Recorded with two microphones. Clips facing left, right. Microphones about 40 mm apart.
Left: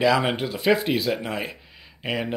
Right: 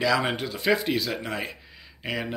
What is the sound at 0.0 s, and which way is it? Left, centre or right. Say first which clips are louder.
Speech: left 3 dB; centre.